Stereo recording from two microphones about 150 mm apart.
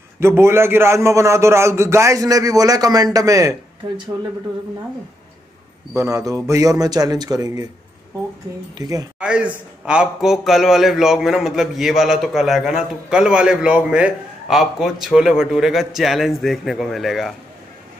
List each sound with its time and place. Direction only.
0.2 s a man's voice: 15° right (ahead or behind)
5.9 s a man's voice: 20° right (ahead or behind)
8.7 s a man's voice: 25° right (ahead or behind)
9.2 s a man's voice: 5° right (ahead or behind)